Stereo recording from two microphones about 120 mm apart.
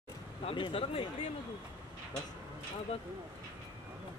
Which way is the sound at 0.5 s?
50° left (ahead or behind).